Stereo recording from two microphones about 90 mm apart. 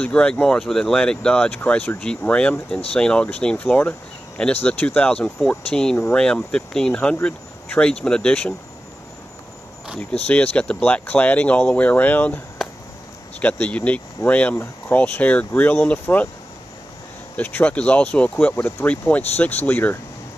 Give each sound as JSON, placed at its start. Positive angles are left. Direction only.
{"t": 0.0, "sound": "speech", "side_deg": 10}
{"t": 9.9, "sound": "speech", "side_deg": 20}
{"t": 12.6, "sound": "a sound", "side_deg": 0}
{"t": 13.4, "sound": "speech", "side_deg": 15}
{"t": 17.4, "sound": "speech", "side_deg": 15}